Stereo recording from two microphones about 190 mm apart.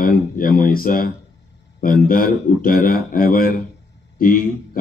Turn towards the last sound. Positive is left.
turn(degrees=45)  # may be behind; listen again after turning